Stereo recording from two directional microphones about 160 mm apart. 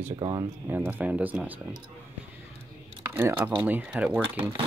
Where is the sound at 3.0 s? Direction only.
15° right (ahead or behind).